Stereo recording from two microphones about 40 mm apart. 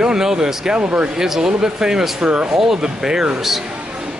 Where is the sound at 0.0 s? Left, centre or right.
Centre.